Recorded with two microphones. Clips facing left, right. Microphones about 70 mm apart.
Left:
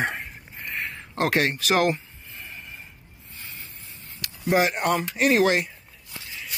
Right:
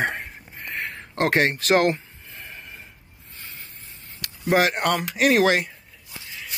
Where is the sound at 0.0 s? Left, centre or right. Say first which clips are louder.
Right 2 dB; right.